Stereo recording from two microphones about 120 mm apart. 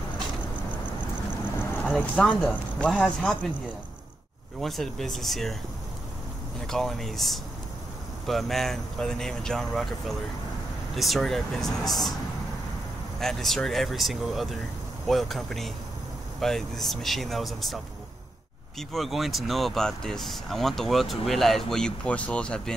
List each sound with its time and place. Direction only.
1.8 s speech: 15° left (ahead or behind)
4.6 s speech: centre (ahead or behind)
6.7 s speech: 5° left (ahead or behind)
13.2 s speech: 5° left (ahead or behind)
18.8 s speech: centre (ahead or behind)